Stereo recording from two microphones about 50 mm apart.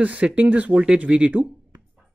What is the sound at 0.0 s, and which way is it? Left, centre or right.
Speech, right.